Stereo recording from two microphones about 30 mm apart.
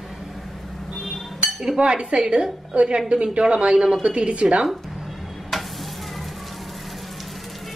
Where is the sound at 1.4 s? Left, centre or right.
Centre.